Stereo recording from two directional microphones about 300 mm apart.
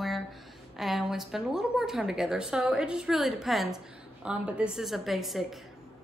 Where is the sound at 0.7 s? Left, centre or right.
Centre.